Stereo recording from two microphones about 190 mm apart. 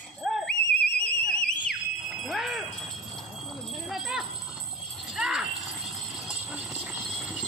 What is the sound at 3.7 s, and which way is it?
Jingle bell, centre (ahead or behind).